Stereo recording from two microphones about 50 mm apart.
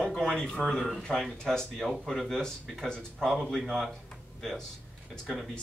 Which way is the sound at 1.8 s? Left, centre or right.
Centre.